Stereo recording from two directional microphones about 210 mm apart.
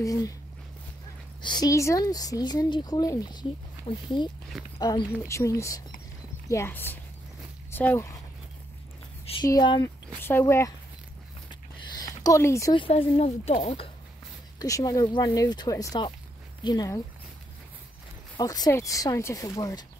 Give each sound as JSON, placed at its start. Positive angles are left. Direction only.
{"t": 0.0, "sound": "speech", "side_deg": 15}
{"t": 1.4, "sound": "speech", "side_deg": 20}
{"t": 9.4, "sound": "speech", "side_deg": 20}
{"t": 12.0, "sound": "speech", "side_deg": 15}
{"t": 14.6, "sound": "speech", "side_deg": 15}
{"t": 18.4, "sound": "speech", "side_deg": 15}